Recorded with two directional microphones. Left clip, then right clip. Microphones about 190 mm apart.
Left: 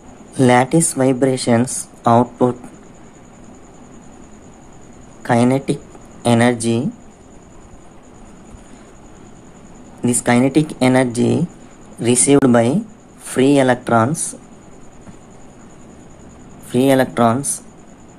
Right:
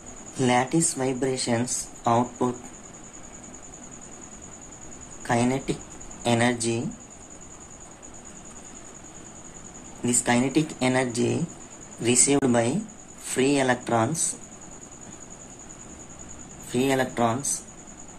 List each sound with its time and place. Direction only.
0.4 s speech: 30° left (ahead or behind)
5.2 s speech: 30° left (ahead or behind)
10.0 s speech: 30° left (ahead or behind)
16.7 s speech: 30° left (ahead or behind)